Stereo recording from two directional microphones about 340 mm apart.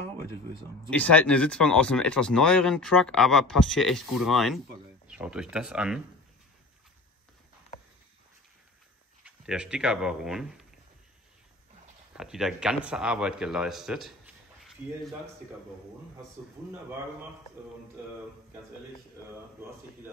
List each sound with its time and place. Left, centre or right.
0.8 s speech: centre
9.2 s speech: centre
12.2 s speech: centre